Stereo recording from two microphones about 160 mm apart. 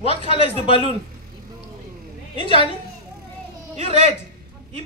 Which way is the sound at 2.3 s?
30° left (ahead or behind).